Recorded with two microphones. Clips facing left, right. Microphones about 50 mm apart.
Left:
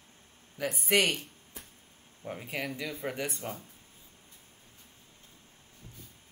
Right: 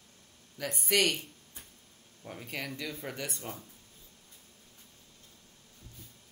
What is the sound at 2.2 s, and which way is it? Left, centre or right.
Speech, centre.